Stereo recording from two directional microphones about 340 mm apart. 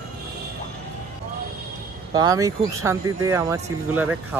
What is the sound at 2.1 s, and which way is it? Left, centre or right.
Speech, centre.